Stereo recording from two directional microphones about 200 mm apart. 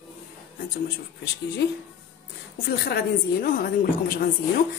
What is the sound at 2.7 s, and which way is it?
A woman's voice, 55° left (ahead or behind).